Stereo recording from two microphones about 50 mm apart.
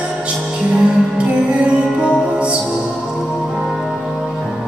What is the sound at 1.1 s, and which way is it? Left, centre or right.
Music, right.